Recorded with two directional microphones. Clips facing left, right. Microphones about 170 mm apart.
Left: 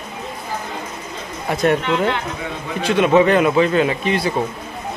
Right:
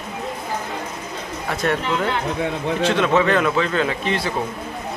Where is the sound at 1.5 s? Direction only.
20° left (ahead or behind).